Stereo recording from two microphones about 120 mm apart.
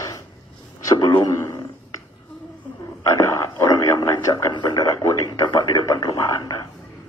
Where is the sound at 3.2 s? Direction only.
25° left (ahead or behind).